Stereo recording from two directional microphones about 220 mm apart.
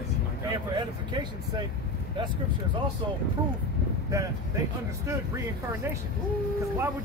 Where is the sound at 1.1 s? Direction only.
20° right (ahead or behind).